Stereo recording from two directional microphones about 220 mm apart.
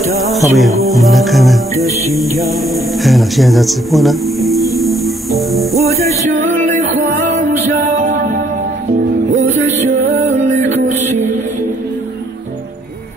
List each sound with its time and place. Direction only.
0.2 s music: centre (ahead or behind)
7.7 s music: 35° right (ahead or behind)
9.9 s music: 35° right (ahead or behind)